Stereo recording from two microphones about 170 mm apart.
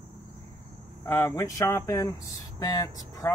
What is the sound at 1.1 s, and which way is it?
Speech, 15° left (ahead or behind).